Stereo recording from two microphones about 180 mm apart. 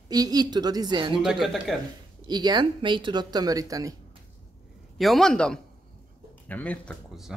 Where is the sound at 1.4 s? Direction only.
Centre (ahead or behind).